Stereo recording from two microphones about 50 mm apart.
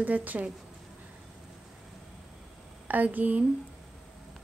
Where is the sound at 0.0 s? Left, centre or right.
Right.